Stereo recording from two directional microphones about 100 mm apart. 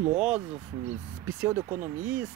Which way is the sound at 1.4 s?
20° right (ahead or behind).